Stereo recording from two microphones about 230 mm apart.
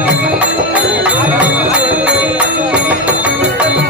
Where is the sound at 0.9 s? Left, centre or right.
Centre.